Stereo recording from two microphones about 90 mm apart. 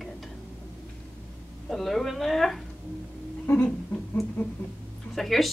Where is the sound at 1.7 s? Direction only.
Centre (ahead or behind).